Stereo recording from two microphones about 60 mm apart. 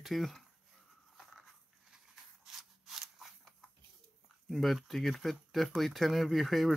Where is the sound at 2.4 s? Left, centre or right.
Centre.